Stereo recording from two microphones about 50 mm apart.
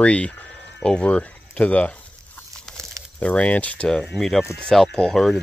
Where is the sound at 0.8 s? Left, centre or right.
Centre.